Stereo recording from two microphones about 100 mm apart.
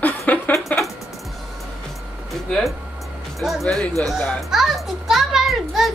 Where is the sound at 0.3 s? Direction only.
15° left (ahead or behind).